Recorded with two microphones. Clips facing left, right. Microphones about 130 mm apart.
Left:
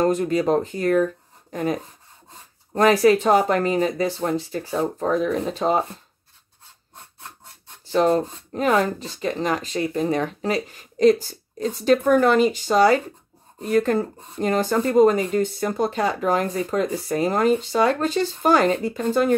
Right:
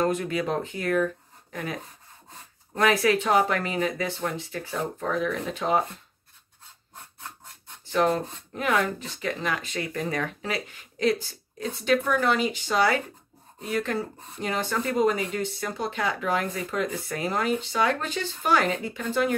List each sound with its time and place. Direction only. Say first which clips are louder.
0.0 s speech: left 6 dB; 35° left (ahead or behind)
7.9 s speech: left 5 dB; 30° left (ahead or behind)